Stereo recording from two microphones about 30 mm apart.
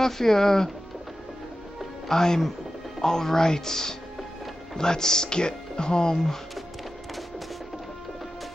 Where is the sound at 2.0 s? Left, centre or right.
Centre.